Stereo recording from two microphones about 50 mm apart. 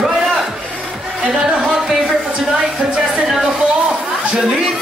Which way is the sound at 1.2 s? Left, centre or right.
Centre.